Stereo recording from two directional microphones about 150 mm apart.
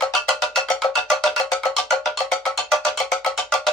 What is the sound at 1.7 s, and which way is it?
Cowbell, 5° left (ahead or behind).